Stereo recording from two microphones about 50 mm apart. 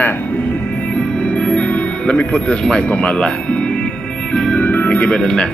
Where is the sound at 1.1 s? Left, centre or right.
Left.